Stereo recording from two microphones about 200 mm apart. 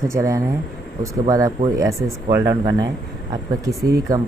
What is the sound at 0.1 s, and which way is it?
Speech, 15° right (ahead or behind).